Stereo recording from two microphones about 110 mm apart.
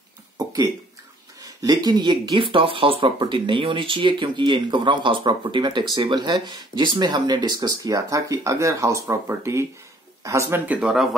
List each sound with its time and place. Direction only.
0.4 s a sound: 30° right (ahead or behind)
1.4 s speech: 35° right (ahead or behind)
10.8 s speech: 5° right (ahead or behind)